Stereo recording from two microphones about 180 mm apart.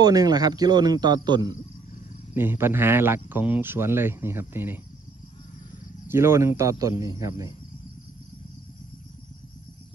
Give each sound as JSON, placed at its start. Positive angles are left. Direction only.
{"t": 0.0, "sound": "a man's voice", "side_deg": -20}
{"t": 2.3, "sound": "speech", "side_deg": -10}
{"t": 6.0, "sound": "speech", "side_deg": -15}